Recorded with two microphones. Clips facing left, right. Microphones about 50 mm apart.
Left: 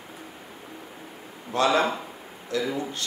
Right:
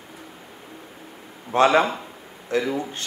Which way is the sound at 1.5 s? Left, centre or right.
Right.